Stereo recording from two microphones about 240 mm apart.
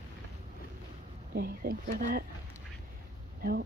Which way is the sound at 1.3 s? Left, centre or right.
Right.